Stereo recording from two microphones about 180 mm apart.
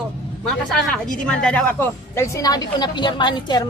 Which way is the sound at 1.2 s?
5° left (ahead or behind).